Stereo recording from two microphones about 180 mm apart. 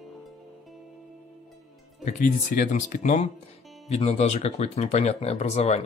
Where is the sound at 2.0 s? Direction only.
45° left (ahead or behind).